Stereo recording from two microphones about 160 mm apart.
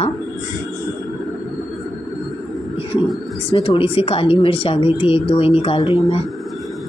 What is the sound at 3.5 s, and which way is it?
Speech, 35° left (ahead or behind).